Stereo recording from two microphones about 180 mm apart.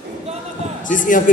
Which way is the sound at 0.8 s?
45° left (ahead or behind).